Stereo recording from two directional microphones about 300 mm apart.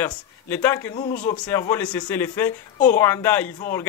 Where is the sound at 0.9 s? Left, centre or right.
Left.